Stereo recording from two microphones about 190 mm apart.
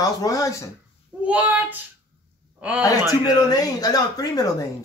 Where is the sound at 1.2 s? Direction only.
5° right (ahead or behind).